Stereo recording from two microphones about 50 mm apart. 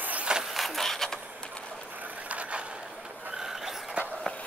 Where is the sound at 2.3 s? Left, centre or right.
Right.